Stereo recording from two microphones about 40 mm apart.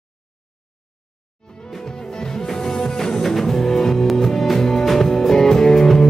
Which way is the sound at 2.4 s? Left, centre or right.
Centre.